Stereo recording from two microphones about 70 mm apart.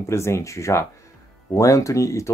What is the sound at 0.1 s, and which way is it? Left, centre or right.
Speech, left.